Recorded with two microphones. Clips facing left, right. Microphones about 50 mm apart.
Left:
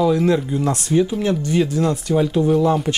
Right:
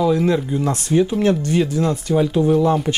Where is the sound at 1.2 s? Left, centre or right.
Right.